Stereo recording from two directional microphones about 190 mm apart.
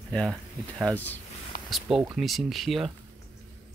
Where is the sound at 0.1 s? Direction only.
5° left (ahead or behind).